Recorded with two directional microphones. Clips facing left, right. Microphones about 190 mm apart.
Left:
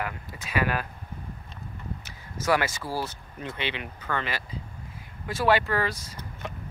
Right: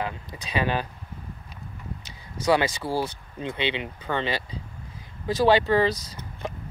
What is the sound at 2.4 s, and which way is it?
Speech, 15° right (ahead or behind).